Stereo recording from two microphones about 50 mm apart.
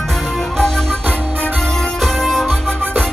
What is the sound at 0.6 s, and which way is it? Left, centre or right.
Music, centre.